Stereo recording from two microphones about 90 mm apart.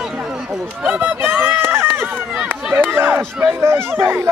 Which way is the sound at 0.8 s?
20° right (ahead or behind).